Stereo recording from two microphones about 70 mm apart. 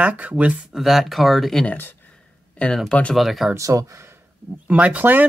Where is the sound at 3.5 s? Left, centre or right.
Right.